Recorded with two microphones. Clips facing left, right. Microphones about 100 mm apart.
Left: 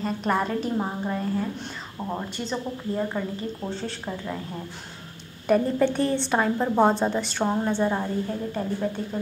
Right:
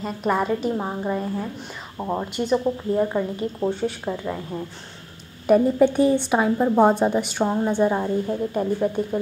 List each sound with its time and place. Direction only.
0.0 s a woman's voice: 5° right (ahead or behind)
2.0 s a woman's voice: 20° right (ahead or behind)
5.5 s a woman's voice: 10° right (ahead or behind)